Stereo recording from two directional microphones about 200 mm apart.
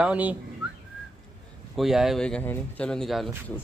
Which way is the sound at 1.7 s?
Centre (ahead or behind).